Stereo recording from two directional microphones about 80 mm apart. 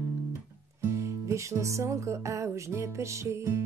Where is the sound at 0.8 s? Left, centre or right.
Right.